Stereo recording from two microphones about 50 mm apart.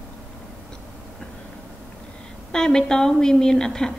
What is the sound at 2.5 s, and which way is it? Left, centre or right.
Speech, centre.